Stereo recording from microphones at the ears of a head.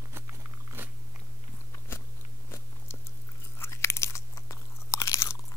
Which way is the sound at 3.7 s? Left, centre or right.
Left.